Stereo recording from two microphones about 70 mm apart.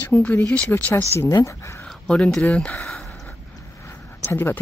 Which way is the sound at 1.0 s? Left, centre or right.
Left.